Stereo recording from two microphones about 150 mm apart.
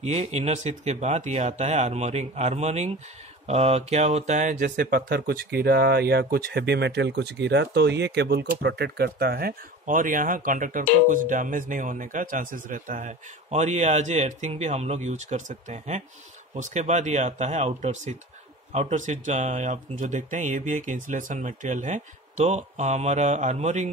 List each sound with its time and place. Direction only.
0.0 s speech: 45° right (ahead or behind)
4.6 s speech: 85° right; by 23.9 s 50° right (ahead or behind)